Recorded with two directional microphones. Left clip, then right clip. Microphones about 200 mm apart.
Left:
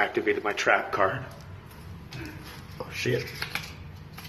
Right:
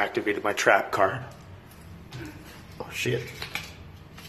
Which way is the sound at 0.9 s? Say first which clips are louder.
Right 1 dB; 20° right (ahead or behind).